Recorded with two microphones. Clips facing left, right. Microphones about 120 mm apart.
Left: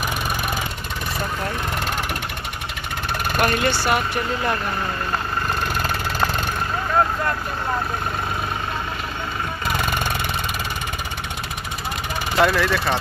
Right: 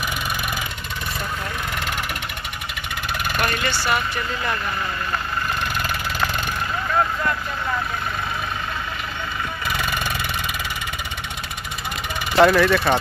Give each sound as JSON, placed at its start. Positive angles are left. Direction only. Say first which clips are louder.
{"t": 3.3, "sound": "speech", "louder": "left 5 dB", "side_deg": 45}
{"t": 12.4, "sound": "speech", "louder": "right 4 dB", "side_deg": 0}